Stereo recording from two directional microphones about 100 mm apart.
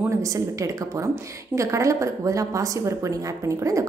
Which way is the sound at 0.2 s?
35° right (ahead or behind).